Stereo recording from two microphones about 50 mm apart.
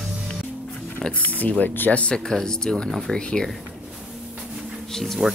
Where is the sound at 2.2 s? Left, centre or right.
Centre.